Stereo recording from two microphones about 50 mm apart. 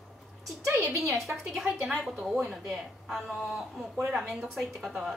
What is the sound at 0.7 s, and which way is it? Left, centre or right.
Speech, right.